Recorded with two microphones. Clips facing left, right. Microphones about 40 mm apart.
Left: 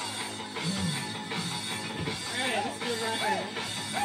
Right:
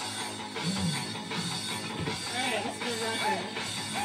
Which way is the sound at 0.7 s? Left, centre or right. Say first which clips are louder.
Even; centre.